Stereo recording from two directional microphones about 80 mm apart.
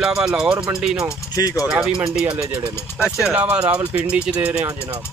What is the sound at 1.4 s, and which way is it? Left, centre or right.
Speech, left.